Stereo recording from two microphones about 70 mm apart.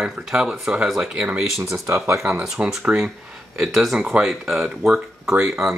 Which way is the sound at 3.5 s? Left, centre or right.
Centre.